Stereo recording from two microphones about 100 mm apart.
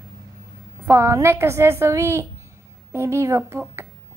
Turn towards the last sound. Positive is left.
turn(degrees=-25)  # may be behind; listen again after turning